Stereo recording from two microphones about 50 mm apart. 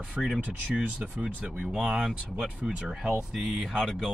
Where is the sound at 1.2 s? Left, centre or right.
Right.